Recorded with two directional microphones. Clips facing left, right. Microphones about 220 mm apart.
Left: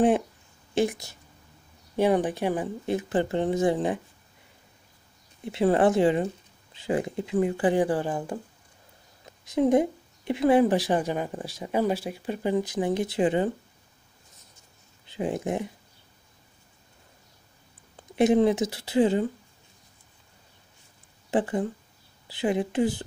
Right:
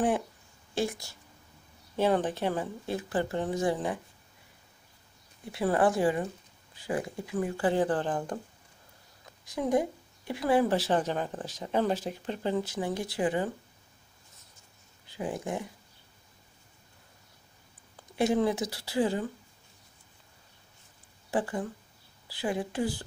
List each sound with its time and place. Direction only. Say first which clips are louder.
0.7 s speech: left 6 dB; 20° left (ahead or behind)
5.4 s speech: left 5 dB; 25° left (ahead or behind)
9.4 s speech: left 6 dB; 20° left (ahead or behind)
15.0 s speech: left 5 dB; 25° left (ahead or behind)
18.1 s speech: left 6 dB; 20° left (ahead or behind)
21.3 s speech: left 5 dB; 20° left (ahead or behind)